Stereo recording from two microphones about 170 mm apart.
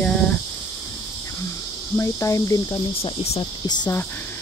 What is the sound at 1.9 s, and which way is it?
Speech, 15° left (ahead or behind).